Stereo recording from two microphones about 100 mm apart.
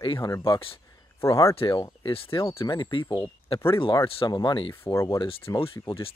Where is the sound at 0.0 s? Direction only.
60° left (ahead or behind).